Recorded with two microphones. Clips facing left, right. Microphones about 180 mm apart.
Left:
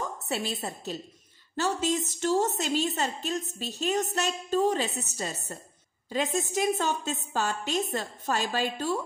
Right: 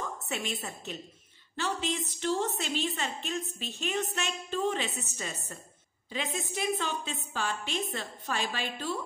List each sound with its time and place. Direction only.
0.3 s a woman's voice: 35° left (ahead or behind)